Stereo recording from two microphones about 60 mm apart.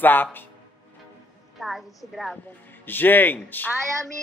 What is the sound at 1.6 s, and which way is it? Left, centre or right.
Speech, centre.